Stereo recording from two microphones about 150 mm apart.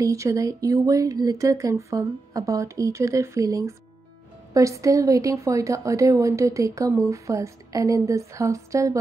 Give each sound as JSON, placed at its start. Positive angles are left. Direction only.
{"t": 0.0, "sound": "speech", "side_deg": -20}